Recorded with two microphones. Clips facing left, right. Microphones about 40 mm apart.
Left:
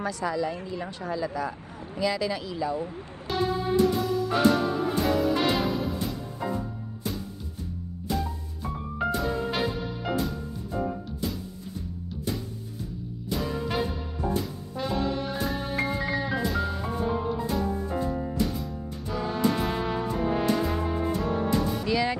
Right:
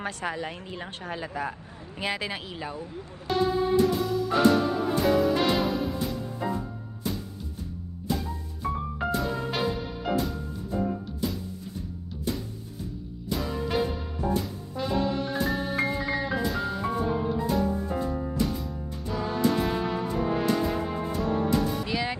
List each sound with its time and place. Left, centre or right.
0.0 s speech: right
3.3 s music: centre
8.1 s music: centre
13.3 s music: centre
21.8 s music: right